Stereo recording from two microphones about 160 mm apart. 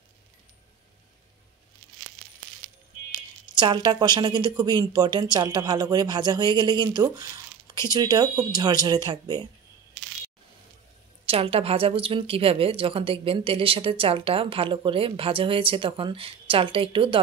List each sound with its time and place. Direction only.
3.1 s speech: 30° right (ahead or behind)
11.2 s speech: 35° right (ahead or behind)